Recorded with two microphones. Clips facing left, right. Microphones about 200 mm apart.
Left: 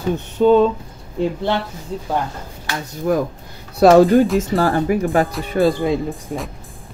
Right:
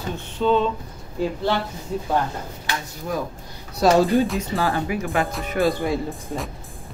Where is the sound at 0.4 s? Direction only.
45° left (ahead or behind).